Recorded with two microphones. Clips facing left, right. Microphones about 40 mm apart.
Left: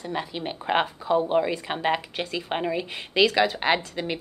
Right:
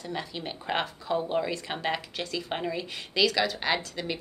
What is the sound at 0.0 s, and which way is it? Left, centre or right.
Speech, centre.